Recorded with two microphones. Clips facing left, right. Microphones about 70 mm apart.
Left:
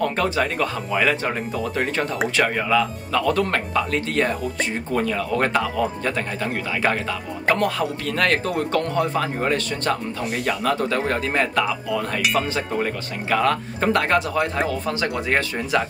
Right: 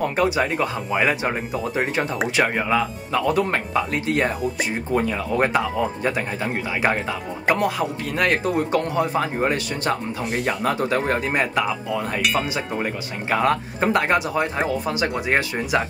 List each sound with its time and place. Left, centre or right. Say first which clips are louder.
0.0 s a man's voice: right 1 dB; centre
2.3 s a man's voice: left 1 dB; centre
12.2 s a man's voice: left 1 dB; centre
13.3 s a man's voice: even; right